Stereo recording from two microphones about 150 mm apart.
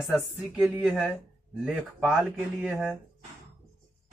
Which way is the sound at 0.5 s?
10° right (ahead or behind).